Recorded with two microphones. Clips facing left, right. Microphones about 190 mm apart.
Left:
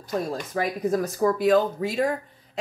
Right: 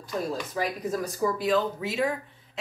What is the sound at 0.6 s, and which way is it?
Speech, 50° left (ahead or behind).